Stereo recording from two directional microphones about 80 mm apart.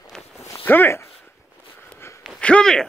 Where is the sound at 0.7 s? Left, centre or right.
Left.